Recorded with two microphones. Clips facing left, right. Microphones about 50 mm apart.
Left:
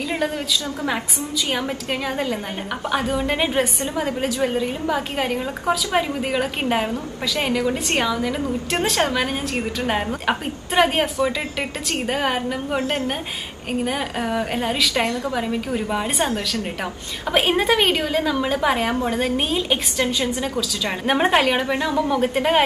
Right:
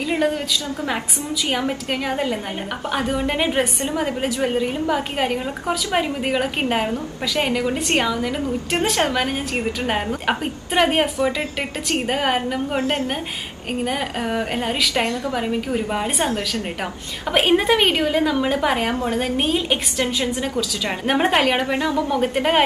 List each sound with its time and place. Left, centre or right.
2.0 s a woman's voice: centre
13.8 s a woman's voice: centre
17.3 s a woman's voice: centre